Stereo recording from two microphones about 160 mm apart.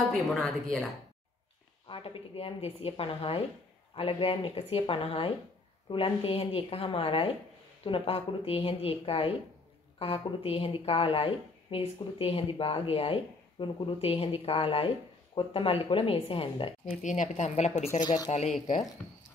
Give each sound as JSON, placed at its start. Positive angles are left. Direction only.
{"t": 0.3, "sound": "a woman's voice", "side_deg": 0}
{"t": 1.9, "sound": "speech", "side_deg": 35}
{"t": 17.0, "sound": "a woman's voice", "side_deg": 50}
{"t": 18.0, "sound": "speech", "side_deg": 25}
{"t": 18.3, "sound": "a woman's voice", "side_deg": 50}